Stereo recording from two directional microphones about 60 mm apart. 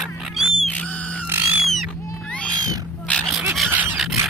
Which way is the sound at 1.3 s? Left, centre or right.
Right.